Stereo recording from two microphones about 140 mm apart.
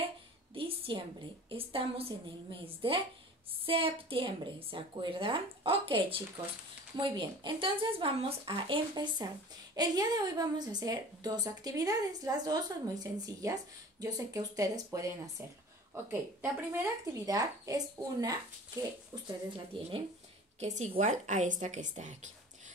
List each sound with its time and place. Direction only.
0.6 s a sound: 40° right (ahead or behind)
1.5 s a woman's voice: 40° right (ahead or behind)
20.6 s a woman's voice: 55° right (ahead or behind)